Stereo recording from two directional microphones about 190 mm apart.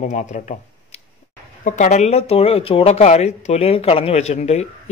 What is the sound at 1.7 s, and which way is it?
Speech, 40° left (ahead or behind).